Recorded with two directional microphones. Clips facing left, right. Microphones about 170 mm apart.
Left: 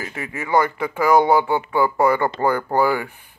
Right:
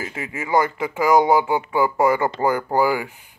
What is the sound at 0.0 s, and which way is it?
Speech, 25° right (ahead or behind).